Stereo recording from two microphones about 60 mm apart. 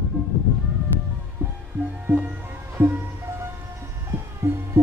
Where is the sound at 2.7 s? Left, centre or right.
Right.